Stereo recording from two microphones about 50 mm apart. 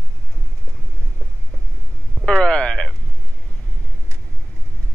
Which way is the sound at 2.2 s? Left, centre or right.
Centre.